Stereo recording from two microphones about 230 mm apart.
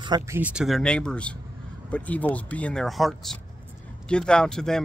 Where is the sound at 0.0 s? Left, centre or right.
Centre.